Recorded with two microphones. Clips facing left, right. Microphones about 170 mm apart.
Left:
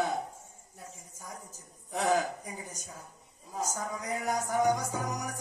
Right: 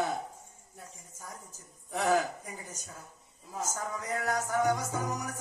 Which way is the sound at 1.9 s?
15° left (ahead or behind).